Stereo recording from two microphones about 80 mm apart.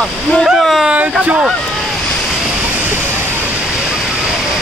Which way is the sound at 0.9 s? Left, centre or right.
Centre.